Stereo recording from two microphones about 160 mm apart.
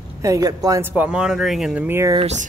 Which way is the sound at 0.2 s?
20° right (ahead or behind).